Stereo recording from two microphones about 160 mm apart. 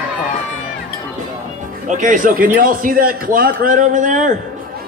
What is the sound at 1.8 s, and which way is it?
A man's voice, 55° right (ahead or behind).